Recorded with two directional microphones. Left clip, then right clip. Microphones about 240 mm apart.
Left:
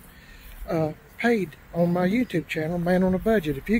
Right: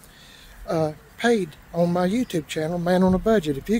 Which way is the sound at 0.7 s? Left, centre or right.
Centre.